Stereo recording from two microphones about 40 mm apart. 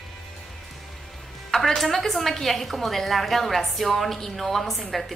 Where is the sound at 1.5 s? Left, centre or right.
Centre.